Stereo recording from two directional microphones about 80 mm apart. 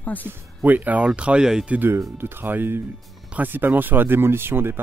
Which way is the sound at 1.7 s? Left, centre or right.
Right.